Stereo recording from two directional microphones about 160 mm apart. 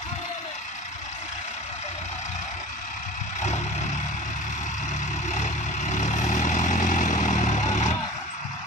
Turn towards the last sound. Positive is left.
turn(degrees=45)  # may be behind; listen again after turning